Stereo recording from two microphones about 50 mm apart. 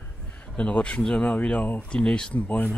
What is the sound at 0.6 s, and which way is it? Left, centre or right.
Speech, left.